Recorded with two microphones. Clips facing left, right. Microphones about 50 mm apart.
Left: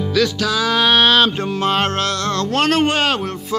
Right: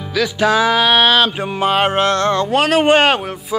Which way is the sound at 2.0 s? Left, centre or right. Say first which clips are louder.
Right 5 dB; right.